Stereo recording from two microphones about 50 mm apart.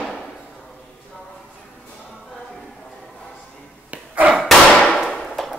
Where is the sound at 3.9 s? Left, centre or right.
Right.